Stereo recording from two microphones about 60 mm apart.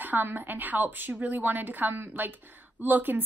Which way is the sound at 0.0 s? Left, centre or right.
Right.